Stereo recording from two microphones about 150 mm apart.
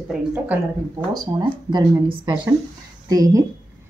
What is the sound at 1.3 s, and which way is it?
Speech, 30° right (ahead or behind).